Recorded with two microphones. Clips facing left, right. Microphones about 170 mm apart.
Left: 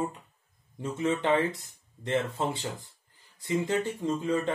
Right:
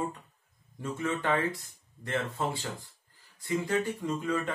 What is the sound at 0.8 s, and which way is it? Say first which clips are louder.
Speech: left 4 dB; 20° left (ahead or behind).